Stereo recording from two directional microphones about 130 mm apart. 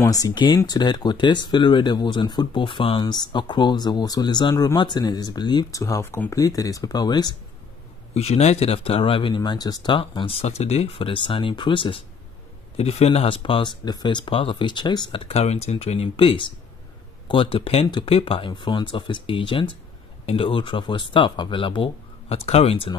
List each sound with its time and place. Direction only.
0.0 s speech: 25° left (ahead or behind)
8.1 s speech: 55° left (ahead or behind); by 9.9 s 30° left (ahead or behind)
9.9 s speech: 45° left (ahead or behind)
12.7 s speech: 55° left (ahead or behind)